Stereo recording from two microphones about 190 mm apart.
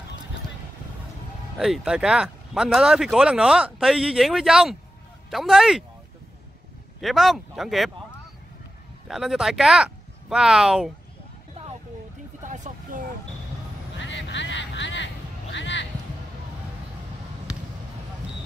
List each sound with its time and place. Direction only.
1.6 s speech: centre (ahead or behind)
7.0 s speech: centre (ahead or behind)
9.0 s speech: centre (ahead or behind)
12.4 s a sound: 40° right (ahead or behind)
13.9 s quack: 75° left (ahead or behind)
15.5 s music: 70° left (ahead or behind)